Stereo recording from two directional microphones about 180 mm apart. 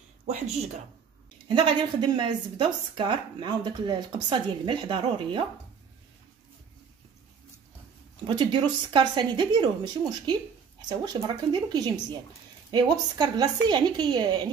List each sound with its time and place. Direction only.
1.5 s a woman's voice: 25° right (ahead or behind)
8.3 s a woman's voice: 25° right (ahead or behind)